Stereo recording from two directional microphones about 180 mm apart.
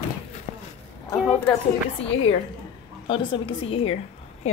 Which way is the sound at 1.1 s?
10° left (ahead or behind).